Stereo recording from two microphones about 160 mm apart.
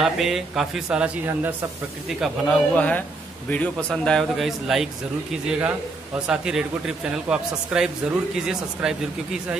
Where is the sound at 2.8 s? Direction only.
10° left (ahead or behind).